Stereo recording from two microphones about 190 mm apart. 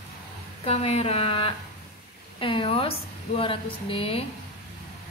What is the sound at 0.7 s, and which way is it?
Speech, 30° left (ahead or behind).